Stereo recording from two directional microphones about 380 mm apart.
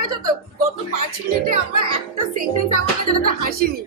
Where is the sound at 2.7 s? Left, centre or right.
Right.